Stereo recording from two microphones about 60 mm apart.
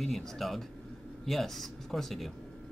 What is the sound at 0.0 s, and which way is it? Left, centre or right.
Speech, centre.